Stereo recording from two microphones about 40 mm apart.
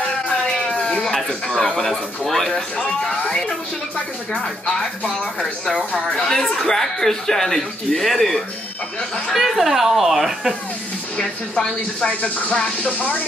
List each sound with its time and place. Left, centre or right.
0.4 s a sound: centre
1.0 s speech: centre
2.8 s speech: left
5.4 s speech: centre
9.3 s a woman's voice: centre
11.1 s speech: centre
12.1 s speech: left